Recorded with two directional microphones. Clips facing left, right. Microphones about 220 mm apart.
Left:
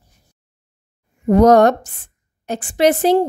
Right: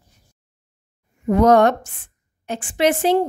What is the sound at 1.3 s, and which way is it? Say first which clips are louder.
A woman's voice: left 3 dB; 40° left (ahead or behind).